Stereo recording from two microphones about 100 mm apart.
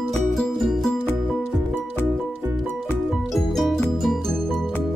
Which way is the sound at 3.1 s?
Centre (ahead or behind).